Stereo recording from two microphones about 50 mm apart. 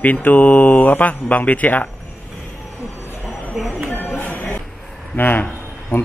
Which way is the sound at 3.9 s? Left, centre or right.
Left.